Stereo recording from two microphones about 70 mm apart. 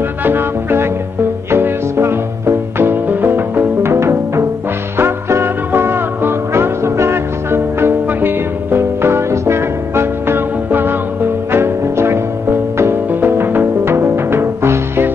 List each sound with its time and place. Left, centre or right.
0.2 s music: right